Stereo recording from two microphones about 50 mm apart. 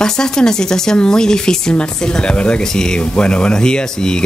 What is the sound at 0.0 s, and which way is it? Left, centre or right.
A woman's voice, centre.